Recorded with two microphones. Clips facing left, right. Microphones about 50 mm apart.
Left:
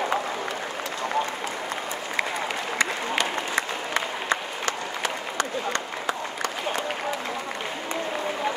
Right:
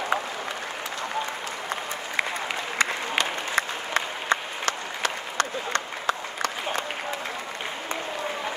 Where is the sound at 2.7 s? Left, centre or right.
Right.